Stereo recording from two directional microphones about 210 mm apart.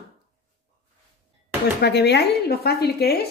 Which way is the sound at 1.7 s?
55° left (ahead or behind).